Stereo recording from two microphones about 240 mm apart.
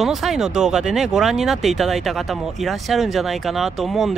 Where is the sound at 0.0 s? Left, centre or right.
Centre.